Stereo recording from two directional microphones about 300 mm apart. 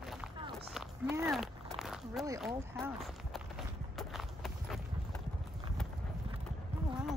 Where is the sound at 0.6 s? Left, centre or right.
Centre.